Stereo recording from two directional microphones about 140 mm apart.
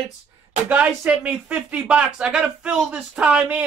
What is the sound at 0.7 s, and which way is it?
Speech, 10° right (ahead or behind).